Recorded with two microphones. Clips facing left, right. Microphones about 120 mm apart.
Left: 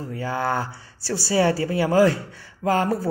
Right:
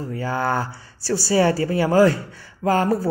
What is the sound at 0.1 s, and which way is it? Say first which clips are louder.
Speech: right 2 dB; 40° right (ahead or behind).